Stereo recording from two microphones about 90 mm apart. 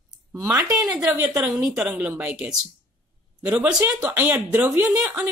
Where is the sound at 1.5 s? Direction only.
15° right (ahead or behind).